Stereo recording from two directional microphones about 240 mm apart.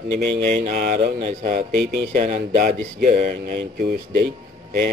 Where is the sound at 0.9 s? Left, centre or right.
Right.